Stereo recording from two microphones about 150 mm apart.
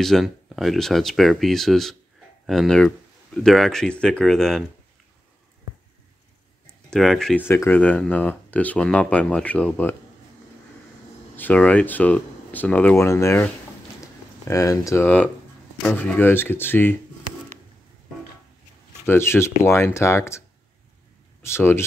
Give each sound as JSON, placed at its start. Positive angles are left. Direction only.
{"t": 0.0, "sound": "speech", "side_deg": 0}
{"t": 6.9, "sound": "speech", "side_deg": 0}
{"t": 7.4, "sound": "speech", "side_deg": 15}
{"t": 11.3, "sound": "speech", "side_deg": 10}
{"t": 19.0, "sound": "speech", "side_deg": 15}